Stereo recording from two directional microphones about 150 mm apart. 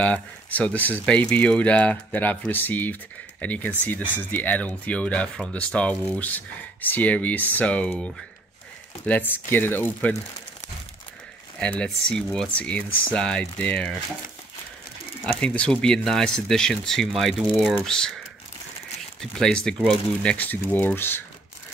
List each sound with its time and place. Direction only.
0.0 s speech: 10° left (ahead or behind)
11.6 s speech: 5° left (ahead or behind)
15.2 s speech: 5° left (ahead or behind)
19.3 s speech: 5° left (ahead or behind)